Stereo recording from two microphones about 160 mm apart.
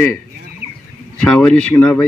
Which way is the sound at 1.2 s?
5° left (ahead or behind).